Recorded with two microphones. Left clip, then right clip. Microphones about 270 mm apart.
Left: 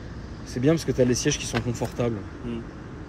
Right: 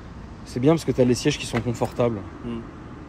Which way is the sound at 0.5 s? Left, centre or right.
Centre.